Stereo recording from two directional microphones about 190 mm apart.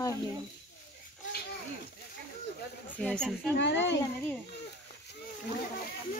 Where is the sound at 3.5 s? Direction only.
70° left (ahead or behind).